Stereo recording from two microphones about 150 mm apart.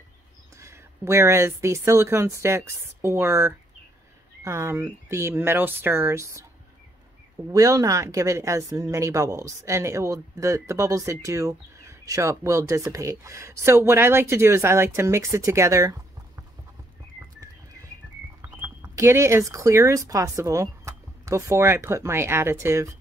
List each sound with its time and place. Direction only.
0.6 s speech: 20° right (ahead or behind)
7.5 s speech: 20° right (ahead or behind)
18.6 s speech: 20° right (ahead or behind)